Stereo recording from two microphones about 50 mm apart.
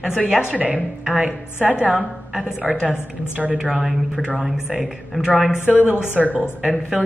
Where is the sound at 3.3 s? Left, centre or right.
Right; by 5.3 s centre.